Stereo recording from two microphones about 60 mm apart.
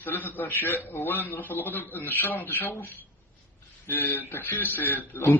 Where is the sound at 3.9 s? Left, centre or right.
Left.